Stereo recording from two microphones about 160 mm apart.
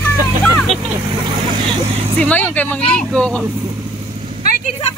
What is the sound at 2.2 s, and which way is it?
Speech, 10° left (ahead or behind).